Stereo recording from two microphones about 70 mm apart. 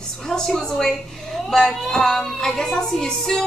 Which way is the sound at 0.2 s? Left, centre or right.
Centre.